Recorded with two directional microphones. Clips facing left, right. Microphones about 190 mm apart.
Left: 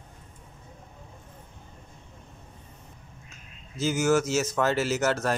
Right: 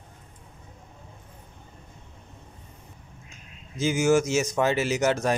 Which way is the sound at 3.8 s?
10° right (ahead or behind).